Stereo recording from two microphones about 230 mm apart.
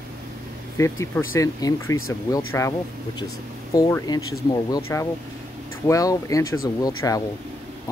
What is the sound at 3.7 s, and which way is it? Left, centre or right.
Speech, centre.